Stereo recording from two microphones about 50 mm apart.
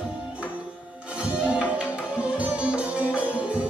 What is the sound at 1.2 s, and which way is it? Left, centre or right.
Music, right.